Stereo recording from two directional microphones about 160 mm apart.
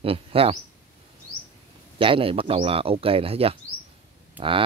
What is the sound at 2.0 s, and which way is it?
Speech, 35° right (ahead or behind).